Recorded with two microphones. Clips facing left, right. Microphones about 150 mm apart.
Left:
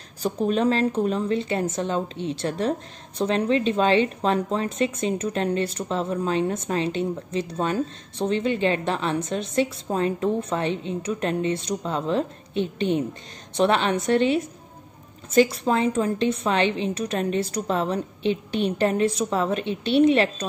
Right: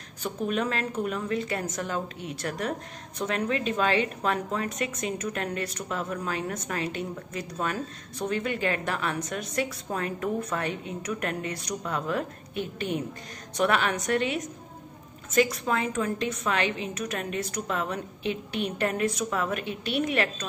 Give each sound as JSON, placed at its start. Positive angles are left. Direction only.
{"t": 0.2, "sound": "a woman's voice", "side_deg": 30}